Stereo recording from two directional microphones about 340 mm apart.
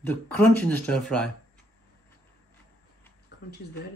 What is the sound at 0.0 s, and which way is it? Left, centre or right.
Speech, centre.